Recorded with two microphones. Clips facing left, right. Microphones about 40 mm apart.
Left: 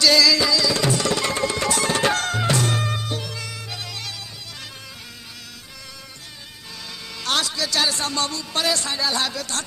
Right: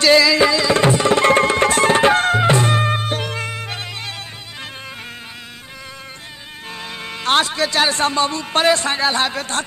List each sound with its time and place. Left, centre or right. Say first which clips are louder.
0.0 s tabla: right 5 dB; right
7.0 s a man's voice: right 7 dB; right